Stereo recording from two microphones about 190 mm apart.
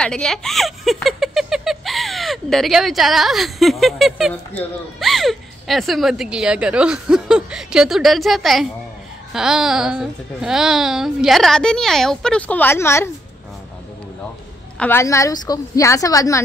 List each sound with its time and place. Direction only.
0.0 s speech: 5° left (ahead or behind)
14.8 s a woman's voice: 10° left (ahead or behind)